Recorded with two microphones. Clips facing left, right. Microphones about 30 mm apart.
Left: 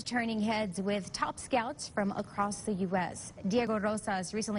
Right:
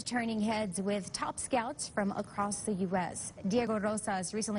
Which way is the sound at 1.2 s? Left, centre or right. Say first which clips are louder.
Left 2 dB; left.